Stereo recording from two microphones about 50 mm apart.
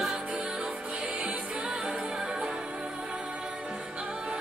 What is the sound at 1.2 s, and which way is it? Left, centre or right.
Music, right.